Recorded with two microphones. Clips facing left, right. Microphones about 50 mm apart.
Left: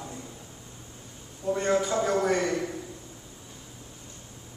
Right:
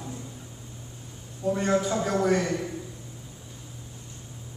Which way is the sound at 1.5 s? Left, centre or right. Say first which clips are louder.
Right 1 dB; centre.